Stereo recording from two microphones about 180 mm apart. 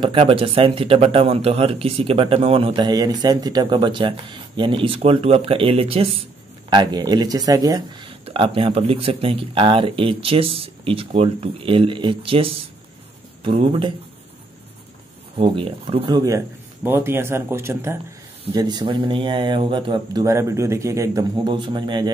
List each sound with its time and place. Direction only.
0.0 s speech: 30° right (ahead or behind)
15.3 s speech: 30° right (ahead or behind)
16.2 s a man's voice: 15° right (ahead or behind)